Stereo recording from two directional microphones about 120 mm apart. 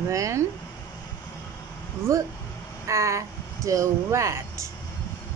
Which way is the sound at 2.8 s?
25° right (ahead or behind).